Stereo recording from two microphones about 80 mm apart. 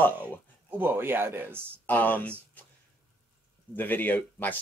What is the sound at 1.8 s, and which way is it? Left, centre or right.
Speech, left.